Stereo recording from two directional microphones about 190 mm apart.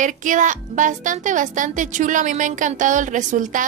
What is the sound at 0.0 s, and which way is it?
Speech, 40° right (ahead or behind).